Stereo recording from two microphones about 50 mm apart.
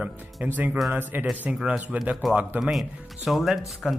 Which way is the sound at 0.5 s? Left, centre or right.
Right.